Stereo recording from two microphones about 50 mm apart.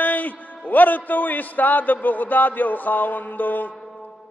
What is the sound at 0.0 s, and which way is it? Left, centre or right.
Music, left.